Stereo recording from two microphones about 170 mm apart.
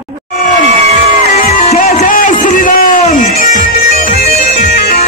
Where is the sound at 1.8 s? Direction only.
45° left (ahead or behind).